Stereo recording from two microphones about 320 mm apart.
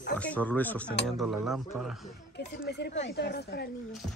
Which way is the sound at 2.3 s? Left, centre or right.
Left.